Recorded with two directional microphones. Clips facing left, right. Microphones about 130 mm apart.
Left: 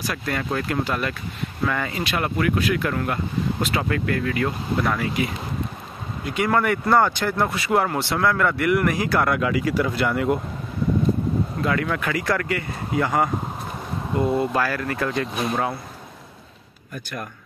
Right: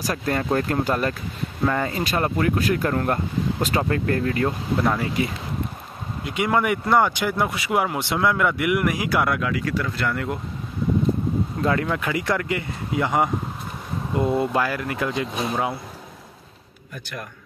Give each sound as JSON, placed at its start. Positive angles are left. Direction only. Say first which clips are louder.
{"t": 0.0, "sound": "speech", "louder": "right 3 dB", "side_deg": -40}
{"t": 6.2, "sound": "speech", "louder": "left 1 dB", "side_deg": -15}
{"t": 9.3, "sound": "speech", "louder": "left 2 dB", "side_deg": 0}
{"t": 11.6, "sound": "speech", "louder": "right 2 dB", "side_deg": -25}
{"t": 14.4, "sound": "speech", "louder": "even", "side_deg": -20}